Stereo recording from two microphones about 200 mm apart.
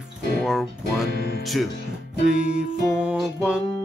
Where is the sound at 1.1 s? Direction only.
50° left (ahead or behind).